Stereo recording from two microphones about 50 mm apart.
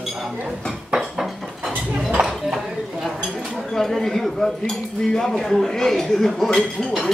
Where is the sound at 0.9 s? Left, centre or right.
Centre.